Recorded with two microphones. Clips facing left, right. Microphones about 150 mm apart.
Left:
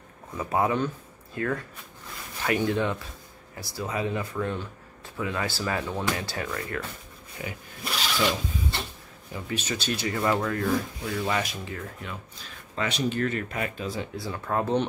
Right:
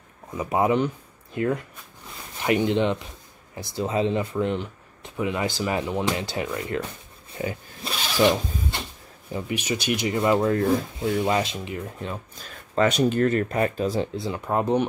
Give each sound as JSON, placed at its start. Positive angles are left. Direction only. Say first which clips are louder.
{"t": 0.4, "sound": "speech", "louder": "right 4 dB", "side_deg": -20}
{"t": 7.3, "sound": "filing", "louder": "right 7 dB", "side_deg": -25}
{"t": 9.5, "sound": "speech", "louder": "right 4 dB", "side_deg": -15}
{"t": 12.4, "sound": "speech", "louder": "right 9 dB", "side_deg": -45}
{"t": 14.1, "sound": "speech", "louder": "right 3 dB", "side_deg": -20}